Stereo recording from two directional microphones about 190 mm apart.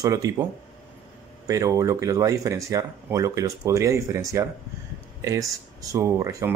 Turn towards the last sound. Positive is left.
turn(degrees=-15)  # may be behind; listen again after turning